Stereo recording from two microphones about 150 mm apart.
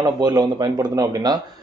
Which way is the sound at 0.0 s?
25° right (ahead or behind).